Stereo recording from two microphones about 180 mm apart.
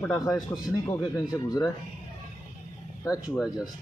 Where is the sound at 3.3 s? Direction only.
Centre (ahead or behind).